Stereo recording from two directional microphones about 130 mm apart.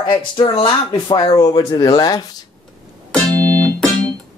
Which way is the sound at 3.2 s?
30° right (ahead or behind).